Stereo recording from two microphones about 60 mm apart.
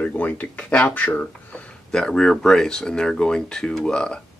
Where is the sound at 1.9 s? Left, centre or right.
Centre.